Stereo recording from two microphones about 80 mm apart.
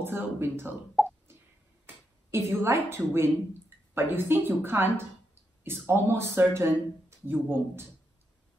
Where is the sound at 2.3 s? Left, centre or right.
Right.